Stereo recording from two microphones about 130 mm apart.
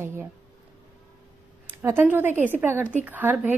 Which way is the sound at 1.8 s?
15° right (ahead or behind).